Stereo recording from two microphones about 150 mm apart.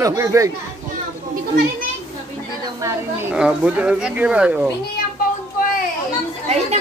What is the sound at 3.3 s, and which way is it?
Speech, 5° right (ahead or behind).